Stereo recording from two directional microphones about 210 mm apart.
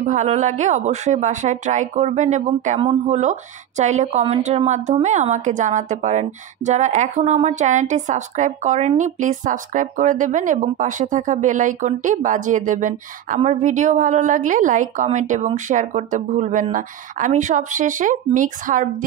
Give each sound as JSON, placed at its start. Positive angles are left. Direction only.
{"t": 0.0, "sound": "speech", "side_deg": -35}